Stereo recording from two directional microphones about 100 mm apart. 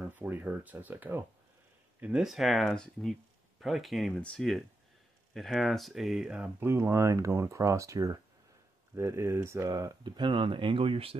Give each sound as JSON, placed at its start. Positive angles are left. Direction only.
{"t": 0.1, "sound": "speech", "side_deg": -20}
{"t": 2.2, "sound": "speech", "side_deg": 0}
{"t": 6.4, "sound": "speech", "side_deg": -25}
{"t": 9.7, "sound": "speech", "side_deg": -45}